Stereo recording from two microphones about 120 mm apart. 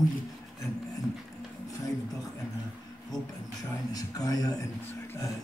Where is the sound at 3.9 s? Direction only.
30° left (ahead or behind).